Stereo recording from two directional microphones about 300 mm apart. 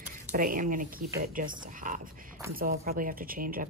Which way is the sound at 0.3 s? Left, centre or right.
Right.